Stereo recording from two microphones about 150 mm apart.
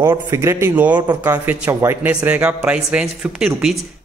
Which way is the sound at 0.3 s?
20° right (ahead or behind).